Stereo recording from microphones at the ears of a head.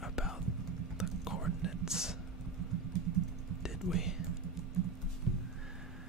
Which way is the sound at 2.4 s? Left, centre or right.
Right.